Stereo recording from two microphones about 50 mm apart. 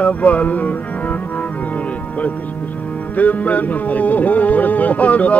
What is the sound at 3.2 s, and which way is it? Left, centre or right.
Music, left.